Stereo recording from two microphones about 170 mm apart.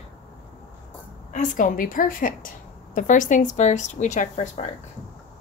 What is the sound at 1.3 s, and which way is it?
A woman's voice, 50° left (ahead or behind).